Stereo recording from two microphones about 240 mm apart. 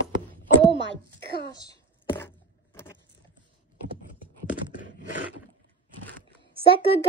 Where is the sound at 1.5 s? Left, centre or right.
Centre.